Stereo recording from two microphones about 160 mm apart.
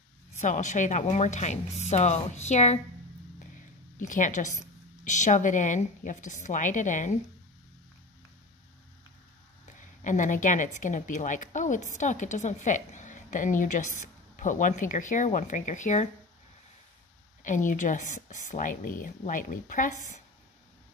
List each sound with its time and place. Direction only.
0.4 s a woman's voice: 50° left (ahead or behind)
4.1 s a woman's voice: 50° left (ahead or behind)
9.8 s a woman's voice: 50° left (ahead or behind)
17.4 s a woman's voice: 55° left (ahead or behind)